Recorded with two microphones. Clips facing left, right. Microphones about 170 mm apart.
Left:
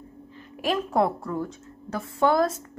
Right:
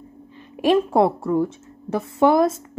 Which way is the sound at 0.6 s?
25° right (ahead or behind).